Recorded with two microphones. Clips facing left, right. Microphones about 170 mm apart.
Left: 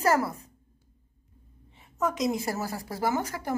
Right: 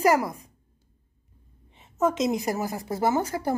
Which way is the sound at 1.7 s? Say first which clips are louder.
Right 5 dB; 25° right (ahead or behind).